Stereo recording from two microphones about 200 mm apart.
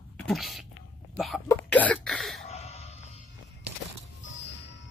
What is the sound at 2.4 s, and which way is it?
Cough, 30° left (ahead or behind).